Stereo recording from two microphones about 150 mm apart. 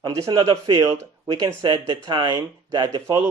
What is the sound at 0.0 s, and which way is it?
Speech, 25° right (ahead or behind).